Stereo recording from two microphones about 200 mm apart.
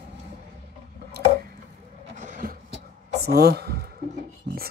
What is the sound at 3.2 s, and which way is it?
Speech, 50° right (ahead or behind).